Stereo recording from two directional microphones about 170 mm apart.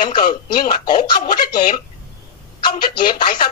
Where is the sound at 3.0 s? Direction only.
25° left (ahead or behind).